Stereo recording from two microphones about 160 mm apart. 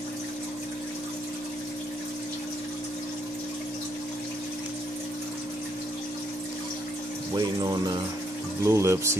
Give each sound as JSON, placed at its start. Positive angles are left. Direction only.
{"t": 7.3, "sound": "speech", "side_deg": -25}